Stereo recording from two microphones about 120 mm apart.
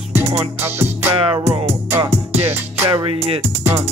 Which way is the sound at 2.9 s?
45° right (ahead or behind).